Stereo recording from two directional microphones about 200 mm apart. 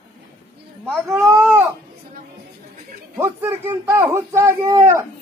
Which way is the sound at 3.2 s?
10° right (ahead or behind).